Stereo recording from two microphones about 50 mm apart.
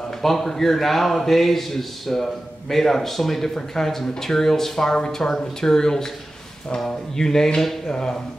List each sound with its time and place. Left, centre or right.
0.2 s a man's voice: centre